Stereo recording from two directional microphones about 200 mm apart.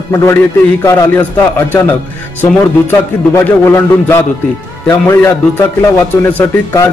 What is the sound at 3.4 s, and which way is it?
A man's voice, 10° left (ahead or behind).